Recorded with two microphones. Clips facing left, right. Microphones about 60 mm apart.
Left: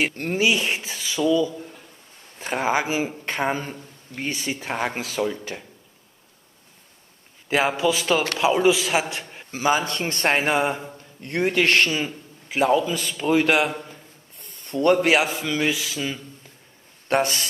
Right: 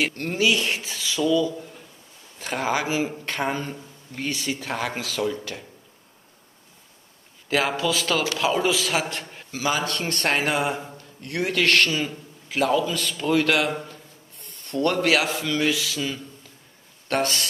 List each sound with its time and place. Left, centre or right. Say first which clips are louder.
0.0 s a man's voice: left 1 dB; centre
7.4 s a man's voice: left 2 dB; left
14.7 s a man's voice: left 3 dB; centre